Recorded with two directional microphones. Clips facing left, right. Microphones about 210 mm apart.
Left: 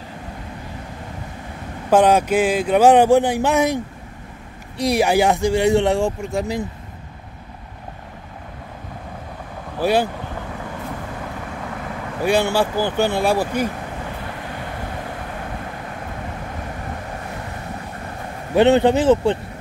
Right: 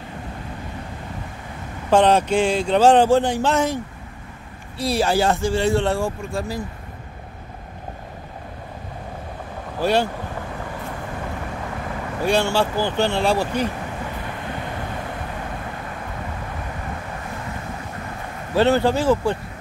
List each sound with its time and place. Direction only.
1.9 s speech: 10° left (ahead or behind)
9.8 s speech: 10° left (ahead or behind)
12.2 s speech: 15° left (ahead or behind)
18.5 s speech: 20° left (ahead or behind)